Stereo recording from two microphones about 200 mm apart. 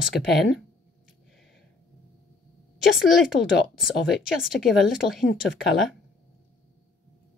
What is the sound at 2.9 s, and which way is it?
Speech, centre (ahead or behind).